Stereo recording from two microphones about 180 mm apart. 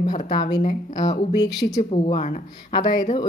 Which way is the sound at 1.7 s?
35° left (ahead or behind).